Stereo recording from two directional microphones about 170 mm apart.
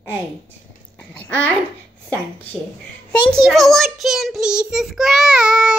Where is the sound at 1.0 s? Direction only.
5° left (ahead or behind).